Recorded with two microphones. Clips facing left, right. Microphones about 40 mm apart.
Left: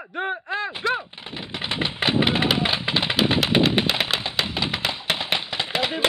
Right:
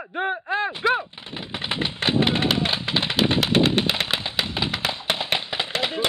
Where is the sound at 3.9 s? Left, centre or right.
Centre.